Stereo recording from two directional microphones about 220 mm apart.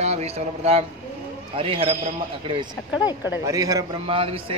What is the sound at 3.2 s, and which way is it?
A man's voice, 10° right (ahead or behind).